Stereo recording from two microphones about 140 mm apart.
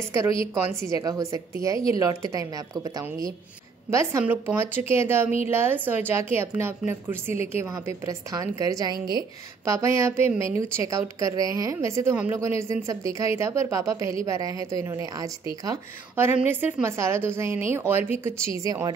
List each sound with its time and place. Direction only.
0.3 s a woman's voice: 40° left (ahead or behind)
0.7 s a woman's voice: 25° right (ahead or behind)
16.3 s a woman's voice: 10° right (ahead or behind)